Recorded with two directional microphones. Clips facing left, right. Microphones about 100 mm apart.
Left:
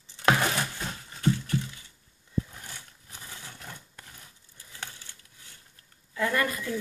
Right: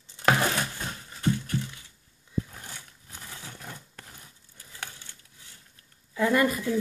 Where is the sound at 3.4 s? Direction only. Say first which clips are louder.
Right 3 dB; 15° right (ahead or behind).